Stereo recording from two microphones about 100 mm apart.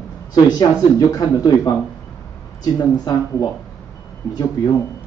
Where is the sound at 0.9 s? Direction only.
40° left (ahead or behind).